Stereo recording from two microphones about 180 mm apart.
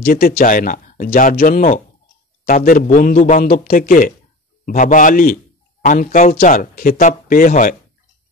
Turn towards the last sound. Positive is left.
turn(degrees=50)  # may be behind; listen again after turning